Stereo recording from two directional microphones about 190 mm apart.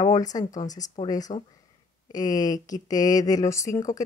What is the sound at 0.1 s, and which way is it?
Speech, 20° left (ahead or behind).